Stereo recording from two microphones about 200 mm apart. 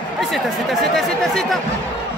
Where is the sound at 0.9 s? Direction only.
Centre (ahead or behind).